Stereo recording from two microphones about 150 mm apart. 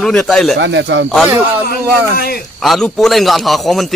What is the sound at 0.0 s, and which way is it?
Speech, 5° left (ahead or behind).